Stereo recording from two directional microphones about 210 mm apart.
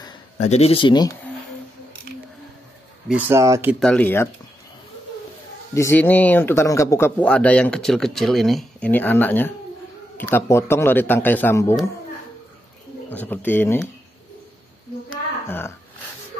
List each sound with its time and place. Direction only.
0.0 s speech: 25° left (ahead or behind)
3.1 s speech: 10° right (ahead or behind)
3.8 s speech: 5° left (ahead or behind)
5.8 s speech: 10° left (ahead or behind)
13.1 s speech: 10° left (ahead or behind)
15.4 s a sound: 10° left (ahead or behind)